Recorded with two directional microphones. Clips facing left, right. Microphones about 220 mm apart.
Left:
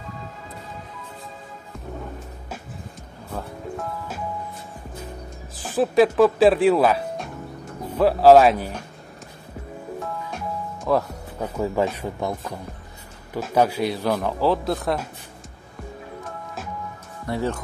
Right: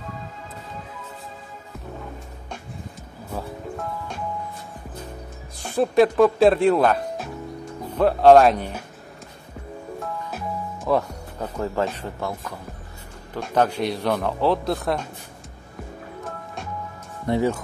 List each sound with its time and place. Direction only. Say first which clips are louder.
3.3 s music: even; centre (ahead or behind)
5.6 s speech: even; centre (ahead or behind)
9.9 s music: even; centre (ahead or behind); by 12.5 s 20° left (ahead or behind)
13.3 s speech: left 1 dB; 10° left (ahead or behind)
17.3 s speech: right 5 dB; 20° right (ahead or behind)